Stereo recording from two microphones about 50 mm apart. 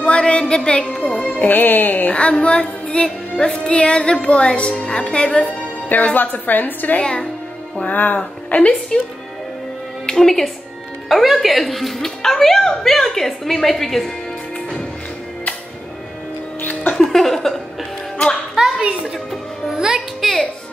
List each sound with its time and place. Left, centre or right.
0.0 s speech: left
1.4 s a woman's voice: left
2.1 s music: left
5.9 s a woman's voice: left
10.0 s speech: centre
16.9 s music: centre
18.1 s music: centre
18.5 s a sound: centre
19.7 s music: centre
20.2 s music: centre